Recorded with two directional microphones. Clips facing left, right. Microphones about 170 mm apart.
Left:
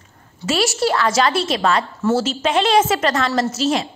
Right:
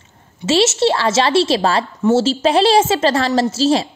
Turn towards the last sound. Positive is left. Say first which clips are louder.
# right 4 dB
turn(degrees=-30)  # may be behind; listen again after turning